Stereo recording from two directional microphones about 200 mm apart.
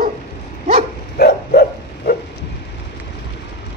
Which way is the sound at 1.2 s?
50° left (ahead or behind).